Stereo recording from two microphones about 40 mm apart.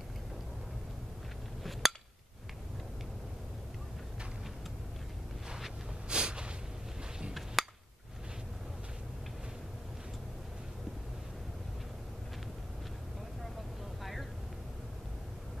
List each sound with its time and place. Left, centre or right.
1.6 s hammer: centre
6.0 s snort: right
7.6 s a sound: centre